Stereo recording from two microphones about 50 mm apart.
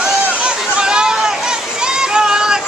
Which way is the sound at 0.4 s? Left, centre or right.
Centre.